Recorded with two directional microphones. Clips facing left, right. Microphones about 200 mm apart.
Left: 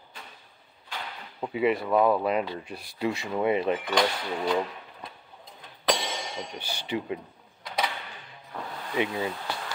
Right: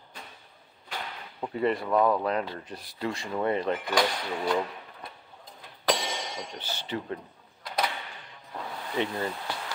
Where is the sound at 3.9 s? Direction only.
Centre (ahead or behind).